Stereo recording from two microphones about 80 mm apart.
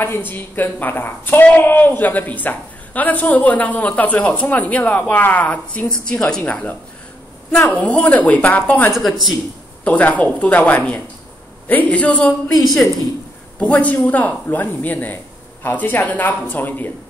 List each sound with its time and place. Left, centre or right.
0.0 s a woman's voice: left
12.5 s a woman's voice: centre
13.6 s a woman's voice: centre